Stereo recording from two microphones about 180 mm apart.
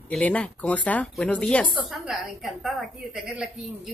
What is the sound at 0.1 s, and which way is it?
Speech, 5° left (ahead or behind).